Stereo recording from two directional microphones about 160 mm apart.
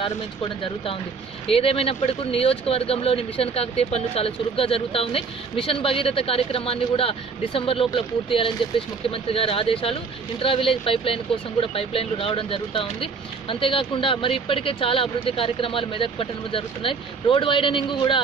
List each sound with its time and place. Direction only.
1.5 s speech: 35° left (ahead or behind)